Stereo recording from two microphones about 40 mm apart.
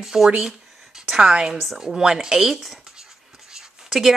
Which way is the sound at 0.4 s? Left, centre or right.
Centre.